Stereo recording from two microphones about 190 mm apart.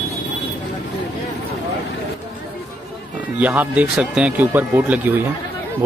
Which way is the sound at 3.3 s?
10° right (ahead or behind).